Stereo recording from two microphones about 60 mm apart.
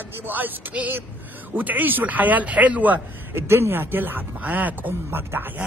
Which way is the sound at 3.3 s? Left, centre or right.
Right.